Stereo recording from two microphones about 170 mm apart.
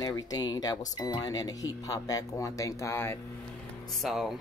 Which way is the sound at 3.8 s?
Centre (ahead or behind).